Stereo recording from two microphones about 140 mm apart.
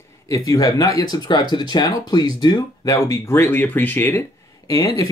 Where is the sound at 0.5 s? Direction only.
25° left (ahead or behind).